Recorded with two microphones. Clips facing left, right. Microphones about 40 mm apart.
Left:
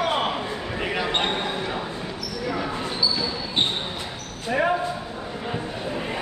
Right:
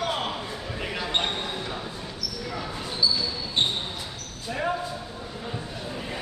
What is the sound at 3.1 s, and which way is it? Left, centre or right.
Basketball bounce, centre.